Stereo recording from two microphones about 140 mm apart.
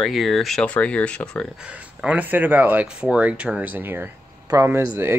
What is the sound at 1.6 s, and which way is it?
Speech, 10° right (ahead or behind).